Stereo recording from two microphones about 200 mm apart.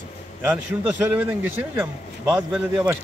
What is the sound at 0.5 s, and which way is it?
A man's voice, 5° right (ahead or behind).